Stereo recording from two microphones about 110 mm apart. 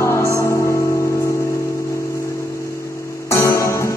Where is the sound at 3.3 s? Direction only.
25° left (ahead or behind).